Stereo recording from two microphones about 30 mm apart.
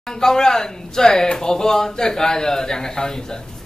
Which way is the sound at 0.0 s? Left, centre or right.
Centre.